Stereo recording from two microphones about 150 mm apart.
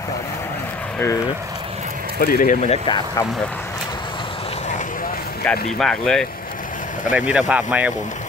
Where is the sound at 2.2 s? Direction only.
70° left (ahead or behind); by 2.7 s 55° left (ahead or behind).